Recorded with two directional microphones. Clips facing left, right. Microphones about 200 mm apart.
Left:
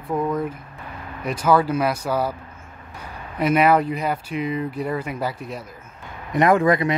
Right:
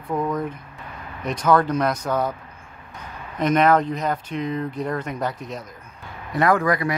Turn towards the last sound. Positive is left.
turn(degrees=25)  # may be behind; listen again after turning